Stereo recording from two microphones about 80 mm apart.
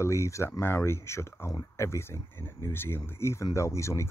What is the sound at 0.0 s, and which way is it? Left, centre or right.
Speech, left.